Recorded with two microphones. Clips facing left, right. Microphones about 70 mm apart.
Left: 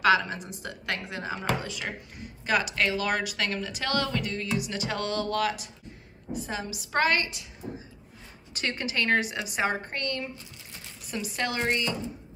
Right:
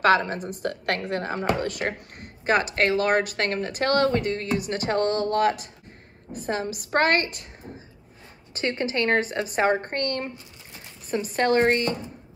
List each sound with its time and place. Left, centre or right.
0.0 s a woman's voice: right
2.4 s a woman's voice: right
8.5 s speech: right